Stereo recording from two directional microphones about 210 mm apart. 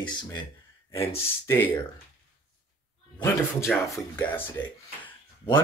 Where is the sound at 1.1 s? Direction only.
10° left (ahead or behind).